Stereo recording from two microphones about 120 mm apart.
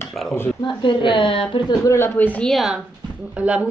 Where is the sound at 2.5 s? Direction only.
Centre (ahead or behind).